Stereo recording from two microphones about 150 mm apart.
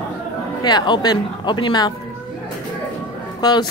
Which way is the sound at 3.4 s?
30° left (ahead or behind).